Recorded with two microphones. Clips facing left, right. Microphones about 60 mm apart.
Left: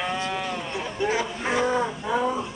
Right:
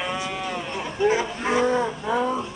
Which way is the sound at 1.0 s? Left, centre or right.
Right.